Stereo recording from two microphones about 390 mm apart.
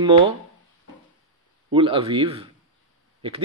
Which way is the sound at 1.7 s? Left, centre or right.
Centre.